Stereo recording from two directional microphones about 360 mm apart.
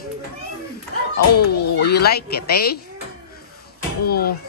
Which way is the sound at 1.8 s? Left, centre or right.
Left.